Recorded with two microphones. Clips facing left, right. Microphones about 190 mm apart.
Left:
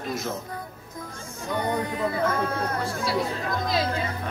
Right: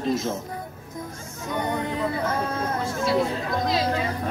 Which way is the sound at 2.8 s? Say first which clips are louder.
Right 3 dB; 25° right (ahead or behind).